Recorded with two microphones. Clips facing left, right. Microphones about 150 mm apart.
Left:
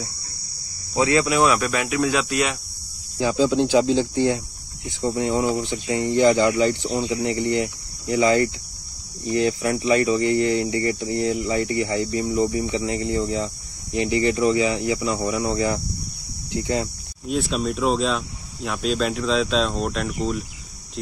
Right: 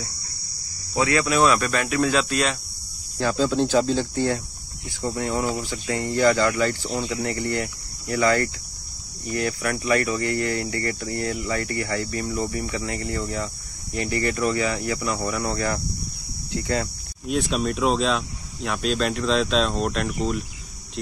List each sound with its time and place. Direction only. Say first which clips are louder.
0.9 s speech: left 2 dB; 20° left (ahead or behind)
17.3 s speech: even; centre (ahead or behind)